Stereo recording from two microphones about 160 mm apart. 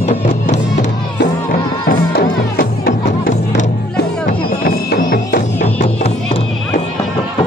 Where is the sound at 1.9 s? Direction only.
65° left (ahead or behind).